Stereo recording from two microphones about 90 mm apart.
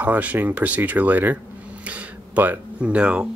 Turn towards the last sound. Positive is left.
turn(degrees=-10)  # may be behind; listen again after turning